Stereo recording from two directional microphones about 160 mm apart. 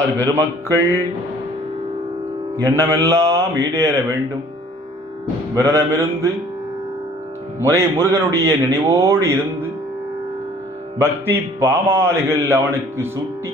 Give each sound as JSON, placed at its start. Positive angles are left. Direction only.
{"t": 0.2, "sound": "speech", "side_deg": -20}
{"t": 2.5, "sound": "speech", "side_deg": -20}
{"t": 5.5, "sound": "speech", "side_deg": -20}
{"t": 7.6, "sound": "speech", "side_deg": -20}
{"t": 11.0, "sound": "speech", "side_deg": -15}